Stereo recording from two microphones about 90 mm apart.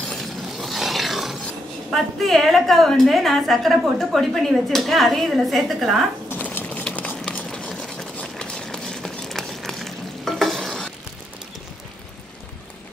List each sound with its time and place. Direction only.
0.1 s shatter: centre (ahead or behind)
1.9 s a woman's voice: centre (ahead or behind)
6.3 s a sound: 20° left (ahead or behind); by 10.9 s 5° left (ahead or behind)